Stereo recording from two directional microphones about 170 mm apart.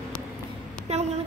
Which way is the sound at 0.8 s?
40° right (ahead or behind).